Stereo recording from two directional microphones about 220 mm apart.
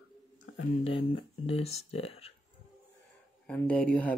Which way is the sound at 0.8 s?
25° left (ahead or behind).